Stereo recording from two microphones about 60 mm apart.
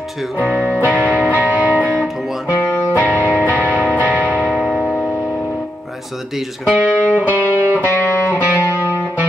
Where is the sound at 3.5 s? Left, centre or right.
Right.